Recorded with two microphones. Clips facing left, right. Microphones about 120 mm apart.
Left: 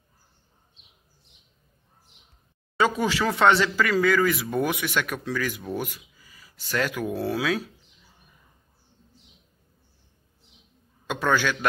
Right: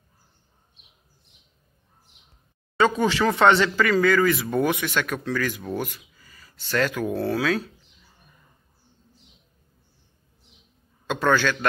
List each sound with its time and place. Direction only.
2.8 s speech: 5° left (ahead or behind)
11.1 s speech: 10° left (ahead or behind)